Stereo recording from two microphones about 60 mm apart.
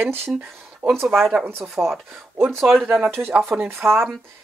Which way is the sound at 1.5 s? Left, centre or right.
Right.